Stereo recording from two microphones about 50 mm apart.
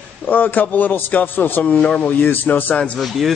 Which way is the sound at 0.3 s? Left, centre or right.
Left.